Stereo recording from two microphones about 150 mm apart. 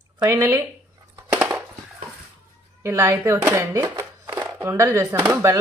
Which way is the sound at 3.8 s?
30° right (ahead or behind).